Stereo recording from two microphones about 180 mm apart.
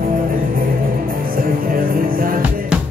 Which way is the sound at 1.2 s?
55° right (ahead or behind).